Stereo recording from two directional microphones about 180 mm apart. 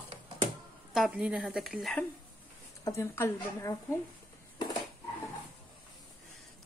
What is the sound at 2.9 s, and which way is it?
A woman's voice, 15° left (ahead or behind).